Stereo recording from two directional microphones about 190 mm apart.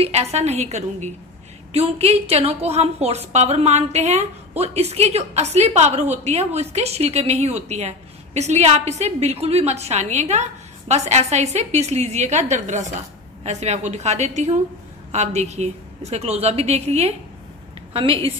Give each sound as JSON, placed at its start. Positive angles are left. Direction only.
{"t": 0.0, "sound": "a woman's voice", "side_deg": -35}